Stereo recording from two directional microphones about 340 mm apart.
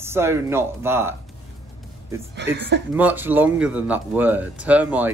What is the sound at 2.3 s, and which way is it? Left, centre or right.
Speech, right.